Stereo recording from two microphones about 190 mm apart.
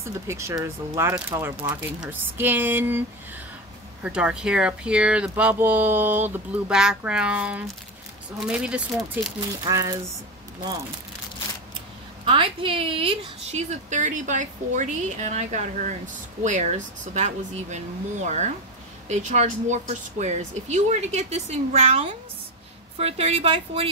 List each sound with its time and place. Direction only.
0.0 s speech: 15° right (ahead or behind)
4.0 s speech: 5° right (ahead or behind)
9.7 s speech: 15° right (ahead or behind)
12.3 s a woman's voice: 25° right (ahead or behind)